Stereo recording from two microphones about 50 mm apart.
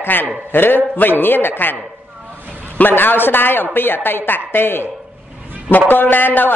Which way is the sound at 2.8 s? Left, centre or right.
Left.